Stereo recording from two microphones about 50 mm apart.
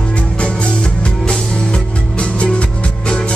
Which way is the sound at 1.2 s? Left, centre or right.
Centre.